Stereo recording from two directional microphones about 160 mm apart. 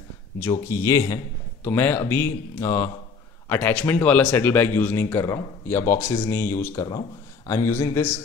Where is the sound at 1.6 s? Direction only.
10° left (ahead or behind).